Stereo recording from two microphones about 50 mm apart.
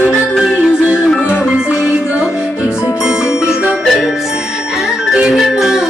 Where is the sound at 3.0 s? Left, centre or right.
Centre.